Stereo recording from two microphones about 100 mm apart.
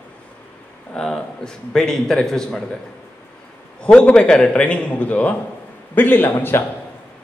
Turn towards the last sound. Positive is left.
turn(degrees=20)  # may be behind; listen again after turning